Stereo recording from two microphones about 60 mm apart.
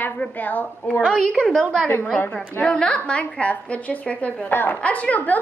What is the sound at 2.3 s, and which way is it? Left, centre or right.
A woman's voice, centre.